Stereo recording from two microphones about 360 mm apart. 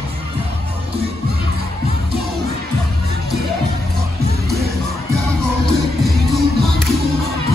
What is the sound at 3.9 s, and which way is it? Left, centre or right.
Music, right.